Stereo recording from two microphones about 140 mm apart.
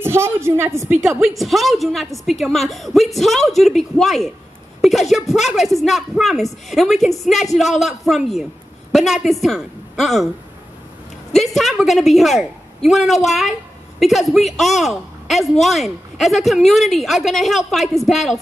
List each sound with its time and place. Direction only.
0.0 s a woman's voice: 20° right (ahead or behind)
1.0 s speech: centre (ahead or behind)
11.3 s a woman's voice: centre (ahead or behind)